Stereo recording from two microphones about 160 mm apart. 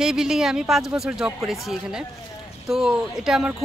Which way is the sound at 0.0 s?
5° right (ahead or behind).